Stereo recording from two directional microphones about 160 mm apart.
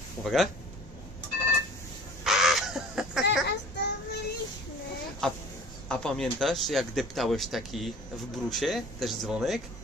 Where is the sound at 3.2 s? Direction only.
90° left.